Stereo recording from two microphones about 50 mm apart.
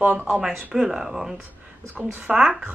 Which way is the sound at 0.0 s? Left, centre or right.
Right.